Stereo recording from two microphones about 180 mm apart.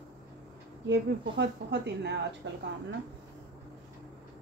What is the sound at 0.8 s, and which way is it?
A woman's voice, 75° right (ahead or behind).